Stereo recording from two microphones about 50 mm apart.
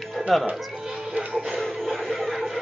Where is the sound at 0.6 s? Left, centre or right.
Centre.